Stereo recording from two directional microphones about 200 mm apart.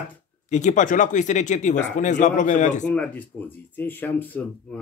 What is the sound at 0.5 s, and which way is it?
Speech, 40° left (ahead or behind).